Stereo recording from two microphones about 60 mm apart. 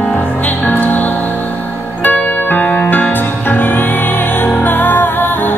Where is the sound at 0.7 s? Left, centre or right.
Left.